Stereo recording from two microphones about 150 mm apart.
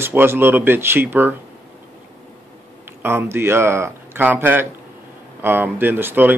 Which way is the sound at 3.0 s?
15° right (ahead or behind).